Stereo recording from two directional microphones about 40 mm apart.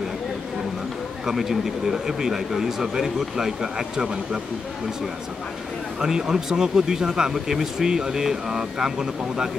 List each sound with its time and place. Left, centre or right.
1.2 s speech: centre
5.9 s speech: centre